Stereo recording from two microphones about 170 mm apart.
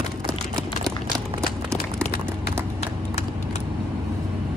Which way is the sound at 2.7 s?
40° left (ahead or behind).